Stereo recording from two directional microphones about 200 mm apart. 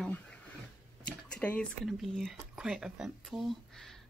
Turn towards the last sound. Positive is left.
turn(degrees=0)  # may be behind; listen again after turning